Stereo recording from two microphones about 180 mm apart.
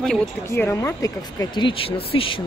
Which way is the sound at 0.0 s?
Centre (ahead or behind).